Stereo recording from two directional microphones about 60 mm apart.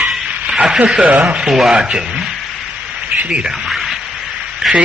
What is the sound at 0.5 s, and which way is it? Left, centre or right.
Speech, centre.